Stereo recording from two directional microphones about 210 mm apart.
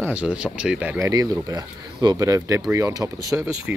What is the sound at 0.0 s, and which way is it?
Speech, 5° right (ahead or behind).